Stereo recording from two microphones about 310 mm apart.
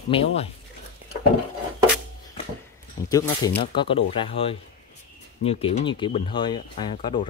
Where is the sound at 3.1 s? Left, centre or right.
Centre.